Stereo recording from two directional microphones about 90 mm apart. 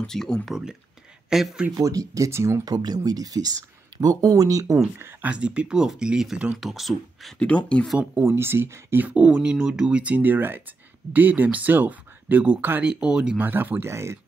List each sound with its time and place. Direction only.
0.0 s speech: 5° left (ahead or behind)
1.3 s speech: 5° right (ahead or behind)
1.8 s speech: 40° right (ahead or behind)
2.6 s speech: 45° right (ahead or behind)
4.9 s speech: 25° right (ahead or behind)
5.3 s speech: 15° right (ahead or behind)
7.3 s speech: 15° left (ahead or behind)
8.1 s speech: 25° right (ahead or behind)
12.9 s speech: 10° right (ahead or behind)
13.4 s speech: 20° right (ahead or behind)